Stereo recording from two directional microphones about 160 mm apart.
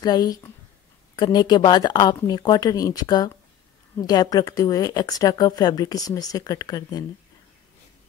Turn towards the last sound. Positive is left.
turn(degrees=25)  # may be behind; listen again after turning